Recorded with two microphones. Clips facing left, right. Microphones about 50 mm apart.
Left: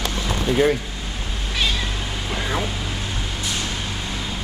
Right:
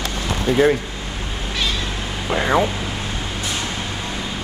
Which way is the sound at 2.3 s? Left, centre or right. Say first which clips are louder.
Right 8 dB; right.